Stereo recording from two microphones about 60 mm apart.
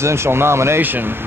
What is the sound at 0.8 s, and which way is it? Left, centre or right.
Speech, right.